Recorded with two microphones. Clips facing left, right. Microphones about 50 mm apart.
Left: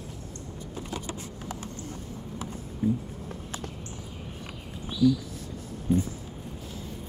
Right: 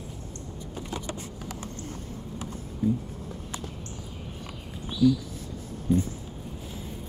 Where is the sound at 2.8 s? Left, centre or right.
Left.